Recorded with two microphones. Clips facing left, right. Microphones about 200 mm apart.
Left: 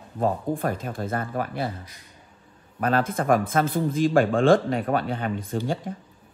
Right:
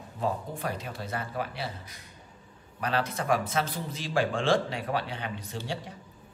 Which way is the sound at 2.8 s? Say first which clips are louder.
Left 7 dB; 50° left (ahead or behind).